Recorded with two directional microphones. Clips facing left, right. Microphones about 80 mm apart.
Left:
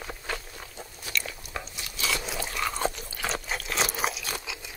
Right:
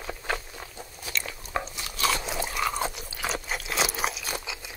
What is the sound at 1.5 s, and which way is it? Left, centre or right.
Biting, right.